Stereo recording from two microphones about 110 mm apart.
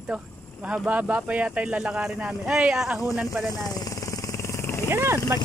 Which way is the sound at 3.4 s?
35° left (ahead or behind).